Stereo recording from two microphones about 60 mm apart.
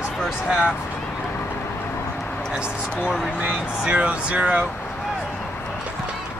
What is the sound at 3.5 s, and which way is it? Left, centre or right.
Speech, centre.